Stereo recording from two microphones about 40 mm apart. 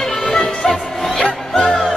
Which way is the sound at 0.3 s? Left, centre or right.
Centre.